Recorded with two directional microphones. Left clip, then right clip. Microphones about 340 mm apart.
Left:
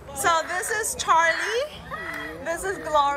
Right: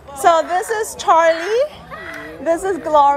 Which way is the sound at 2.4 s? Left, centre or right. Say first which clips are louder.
Right 11 dB; right.